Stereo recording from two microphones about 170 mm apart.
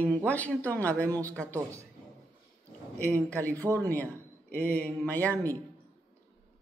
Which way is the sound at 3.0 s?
10° left (ahead or behind).